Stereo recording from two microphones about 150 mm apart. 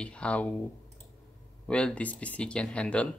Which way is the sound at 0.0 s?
5° left (ahead or behind).